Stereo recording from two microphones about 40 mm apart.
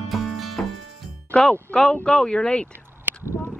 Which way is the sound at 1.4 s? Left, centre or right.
Centre.